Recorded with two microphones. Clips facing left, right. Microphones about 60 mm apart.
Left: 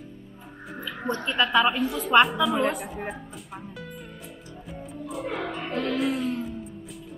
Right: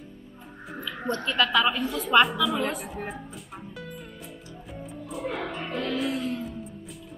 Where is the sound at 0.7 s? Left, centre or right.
Centre.